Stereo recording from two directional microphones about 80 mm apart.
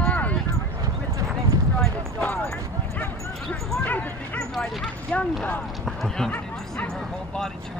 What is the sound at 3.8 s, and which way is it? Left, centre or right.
Dog, left.